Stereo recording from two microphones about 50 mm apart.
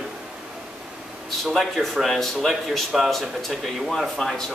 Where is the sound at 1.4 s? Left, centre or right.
Centre.